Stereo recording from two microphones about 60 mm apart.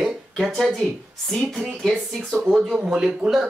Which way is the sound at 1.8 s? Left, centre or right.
Centre.